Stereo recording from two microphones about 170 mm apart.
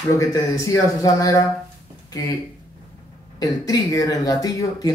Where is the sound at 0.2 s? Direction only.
20° left (ahead or behind).